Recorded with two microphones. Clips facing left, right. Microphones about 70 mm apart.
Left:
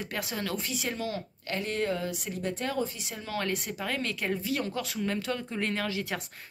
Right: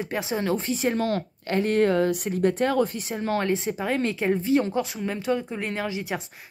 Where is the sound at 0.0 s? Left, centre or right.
Right.